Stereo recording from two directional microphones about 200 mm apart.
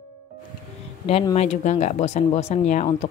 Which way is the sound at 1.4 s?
35° left (ahead or behind).